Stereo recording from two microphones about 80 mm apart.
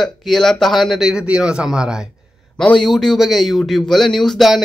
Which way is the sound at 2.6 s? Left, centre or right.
Centre.